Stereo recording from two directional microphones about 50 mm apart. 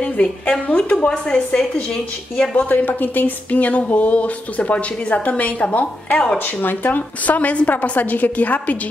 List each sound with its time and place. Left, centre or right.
0.0 s speech: left
2.5 s speech: left
6.3 s a woman's voice: left